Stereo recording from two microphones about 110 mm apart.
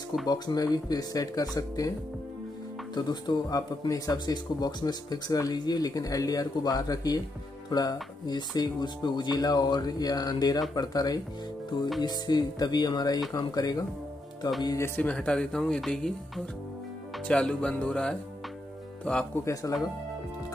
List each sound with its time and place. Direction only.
0.3 s speech: 35° left (ahead or behind)
15.0 s speech: 10° left (ahead or behind)
19.4 s speech: 30° left (ahead or behind)